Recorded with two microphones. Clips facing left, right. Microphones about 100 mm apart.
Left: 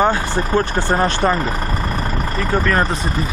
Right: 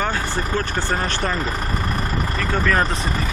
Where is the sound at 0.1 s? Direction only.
15° left (ahead or behind).